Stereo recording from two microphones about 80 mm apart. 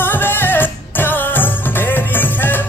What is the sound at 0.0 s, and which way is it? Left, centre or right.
Music, left.